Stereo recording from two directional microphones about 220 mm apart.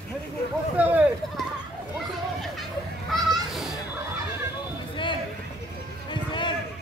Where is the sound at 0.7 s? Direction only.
5° right (ahead or behind).